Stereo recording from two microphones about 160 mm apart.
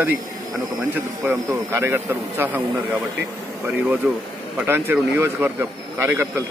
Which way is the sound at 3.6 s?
10° right (ahead or behind).